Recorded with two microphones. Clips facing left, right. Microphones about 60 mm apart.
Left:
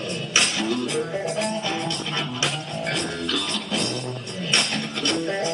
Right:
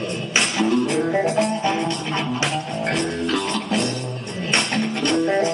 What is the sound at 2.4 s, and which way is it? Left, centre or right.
Music, right.